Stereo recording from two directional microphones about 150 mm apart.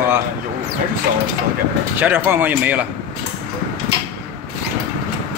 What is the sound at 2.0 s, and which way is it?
Speech, 15° right (ahead or behind).